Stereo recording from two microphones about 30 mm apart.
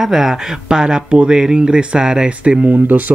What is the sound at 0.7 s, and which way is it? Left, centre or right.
Speech, right.